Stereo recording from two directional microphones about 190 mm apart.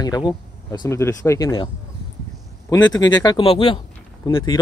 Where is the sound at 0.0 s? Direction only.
20° left (ahead or behind).